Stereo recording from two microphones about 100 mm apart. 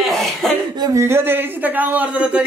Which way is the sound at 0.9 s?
25° right (ahead or behind).